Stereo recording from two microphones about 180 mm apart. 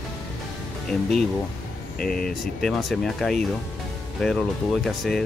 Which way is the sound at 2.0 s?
5° left (ahead or behind).